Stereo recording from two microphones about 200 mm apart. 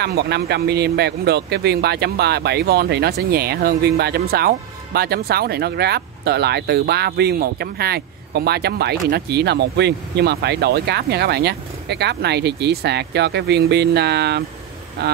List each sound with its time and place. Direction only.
0.0 s speech: 50° right (ahead or behind)